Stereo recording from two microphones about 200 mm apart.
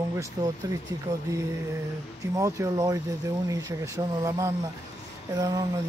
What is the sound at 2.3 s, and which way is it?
Speech, 15° right (ahead or behind).